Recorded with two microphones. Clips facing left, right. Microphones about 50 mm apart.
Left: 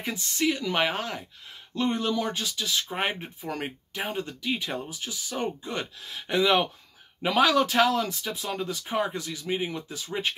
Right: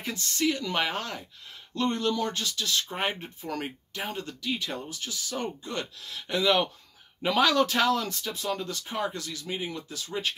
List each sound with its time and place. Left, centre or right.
0.0 s speech: centre